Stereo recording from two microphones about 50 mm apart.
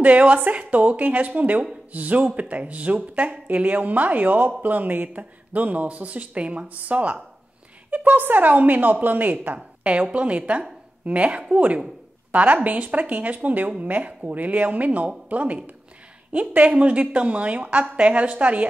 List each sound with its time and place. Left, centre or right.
0.0 s speech: right
9.8 s speech: right